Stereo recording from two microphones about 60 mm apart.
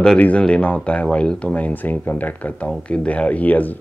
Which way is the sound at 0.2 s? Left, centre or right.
Centre.